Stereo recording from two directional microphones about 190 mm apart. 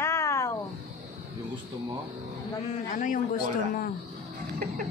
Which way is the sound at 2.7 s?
45° left (ahead or behind).